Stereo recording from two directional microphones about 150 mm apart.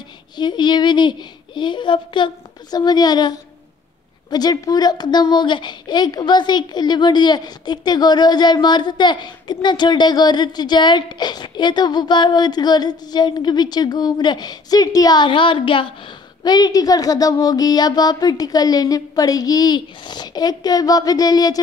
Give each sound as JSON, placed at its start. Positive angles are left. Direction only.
{"t": 0.4, "sound": "a child's voice", "side_deg": 30}